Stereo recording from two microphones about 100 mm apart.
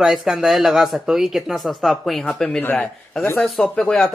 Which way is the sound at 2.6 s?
20° left (ahead or behind).